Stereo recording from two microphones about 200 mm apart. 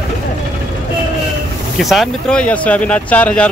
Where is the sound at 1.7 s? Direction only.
Centre (ahead or behind).